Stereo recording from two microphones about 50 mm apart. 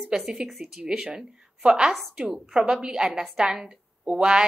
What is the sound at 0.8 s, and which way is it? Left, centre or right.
A woman's voice, centre.